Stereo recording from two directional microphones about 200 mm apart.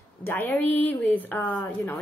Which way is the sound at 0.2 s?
10° left (ahead or behind).